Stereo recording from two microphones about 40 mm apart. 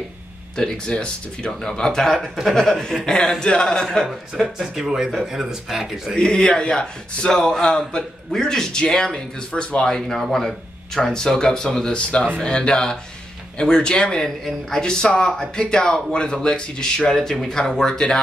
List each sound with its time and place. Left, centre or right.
0.6 s a man's voice: centre
2.1 s speech: centre
4.6 s speech: centre
6.1 s a man's voice: left
9.8 s a man's voice: centre
14.2 s speech: centre
14.8 s a man's voice: centre